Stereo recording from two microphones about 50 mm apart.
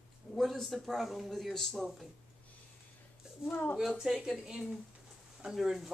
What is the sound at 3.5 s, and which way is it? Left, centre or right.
Speech, left.